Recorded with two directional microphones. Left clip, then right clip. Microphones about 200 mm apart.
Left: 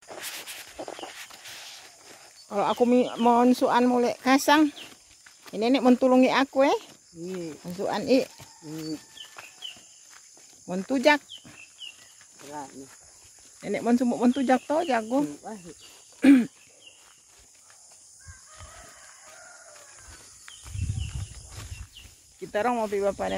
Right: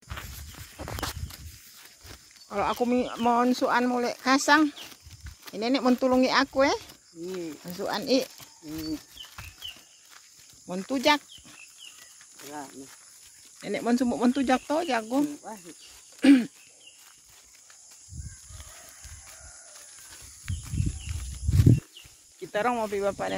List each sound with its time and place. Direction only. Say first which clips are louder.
2.5 s speech: left 4 dB; 20° left (ahead or behind)
7.2 s speech: even; 55° right (ahead or behind)
7.7 s speech: left 3 dB; 15° left (ahead or behind)
10.9 s speech: left 2 dB; 15° left (ahead or behind)
13.6 s speech: left 2 dB; centre (ahead or behind)
16.2 s a sound: left 1 dB; 5° left (ahead or behind)
22.5 s speech: left 1 dB; centre (ahead or behind)